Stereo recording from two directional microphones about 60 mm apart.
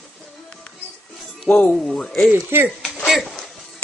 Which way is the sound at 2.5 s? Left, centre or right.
Right.